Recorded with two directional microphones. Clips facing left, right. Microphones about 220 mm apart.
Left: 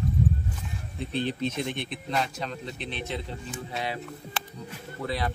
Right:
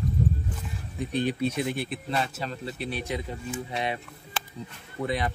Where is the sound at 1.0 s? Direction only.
15° right (ahead or behind).